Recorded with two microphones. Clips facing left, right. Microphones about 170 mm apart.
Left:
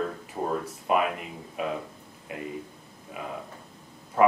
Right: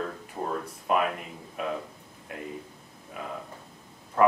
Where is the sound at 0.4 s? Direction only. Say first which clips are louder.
Left 3 dB; 10° left (ahead or behind).